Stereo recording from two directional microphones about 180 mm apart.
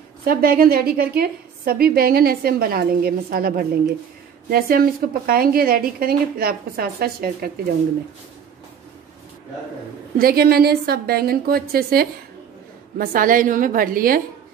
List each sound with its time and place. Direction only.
0.2 s a woman's voice: 55° right (ahead or behind)
10.1 s a woman's voice: 55° right (ahead or behind)